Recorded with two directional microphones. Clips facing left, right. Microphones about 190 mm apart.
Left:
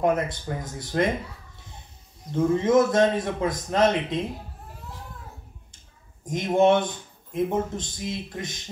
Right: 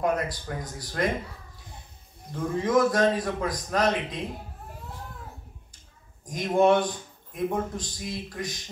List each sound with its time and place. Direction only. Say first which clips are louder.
0.0 s a man's voice: left 3 dB; 25° left (ahead or behind)
2.3 s a man's voice: left 4 dB; 25° left (ahead or behind)
6.2 s a man's voice: left 2 dB; 25° left (ahead or behind)